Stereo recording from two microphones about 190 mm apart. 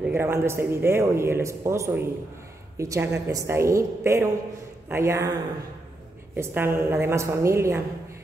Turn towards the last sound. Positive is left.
turn(degrees=-15)  # may be behind; listen again after turning